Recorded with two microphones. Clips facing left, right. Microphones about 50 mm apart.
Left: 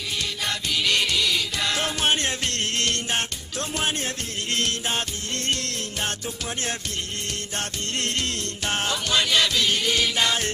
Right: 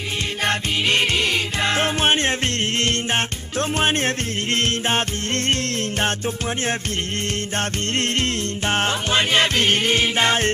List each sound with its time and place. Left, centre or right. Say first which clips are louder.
0.4 s music: right 6 dB; right
7.5 s music: right 6 dB; right